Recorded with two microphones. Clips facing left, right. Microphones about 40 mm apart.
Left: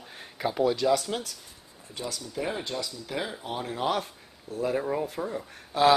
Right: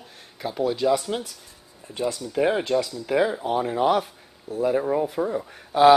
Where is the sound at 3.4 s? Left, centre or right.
Centre.